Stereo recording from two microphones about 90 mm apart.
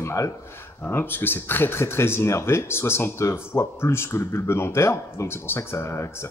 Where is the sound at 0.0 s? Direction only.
35° left (ahead or behind).